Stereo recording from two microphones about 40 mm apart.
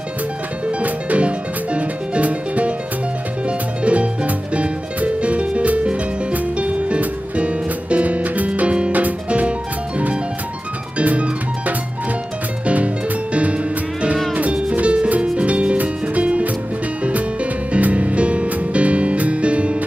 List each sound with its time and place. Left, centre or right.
0.8 s music: right
11.0 s music: right
17.7 s music: right